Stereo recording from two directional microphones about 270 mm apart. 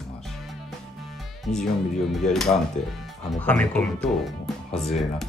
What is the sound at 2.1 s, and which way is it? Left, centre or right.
Speech, centre.